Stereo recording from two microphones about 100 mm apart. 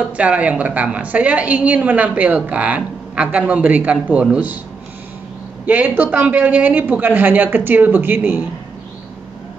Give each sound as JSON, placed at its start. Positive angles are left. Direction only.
{"t": 0.2, "sound": "a woman's voice", "side_deg": -15}
{"t": 5.7, "sound": "a woman's voice", "side_deg": -15}